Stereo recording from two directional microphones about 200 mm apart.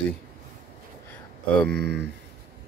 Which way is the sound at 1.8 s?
55° right (ahead or behind).